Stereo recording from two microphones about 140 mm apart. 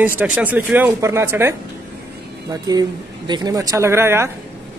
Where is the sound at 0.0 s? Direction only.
10° right (ahead or behind).